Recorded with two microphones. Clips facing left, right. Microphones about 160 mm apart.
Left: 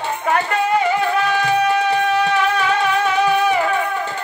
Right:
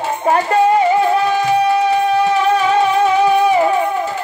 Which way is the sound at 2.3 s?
30° right (ahead or behind).